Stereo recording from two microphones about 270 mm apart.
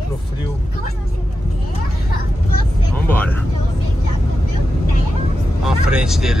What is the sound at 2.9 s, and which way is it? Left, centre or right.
Vehicle, centre.